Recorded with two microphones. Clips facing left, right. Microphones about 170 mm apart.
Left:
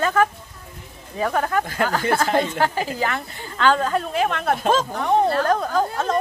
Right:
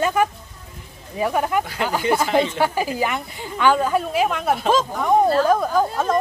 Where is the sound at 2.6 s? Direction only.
10° right (ahead or behind).